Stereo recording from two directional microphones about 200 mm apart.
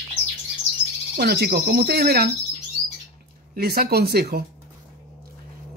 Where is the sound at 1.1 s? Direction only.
55° right (ahead or behind).